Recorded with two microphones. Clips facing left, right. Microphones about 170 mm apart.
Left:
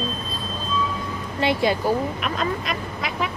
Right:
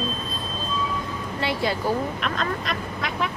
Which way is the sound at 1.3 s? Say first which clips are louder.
Left 5 dB; 20° left (ahead or behind).